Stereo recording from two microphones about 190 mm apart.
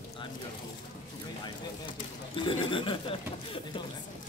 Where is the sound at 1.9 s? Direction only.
25° left (ahead or behind).